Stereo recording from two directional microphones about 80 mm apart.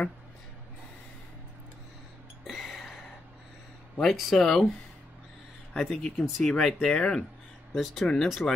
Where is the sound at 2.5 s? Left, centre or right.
Centre.